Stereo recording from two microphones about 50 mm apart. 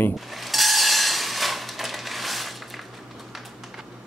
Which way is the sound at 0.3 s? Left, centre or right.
Centre.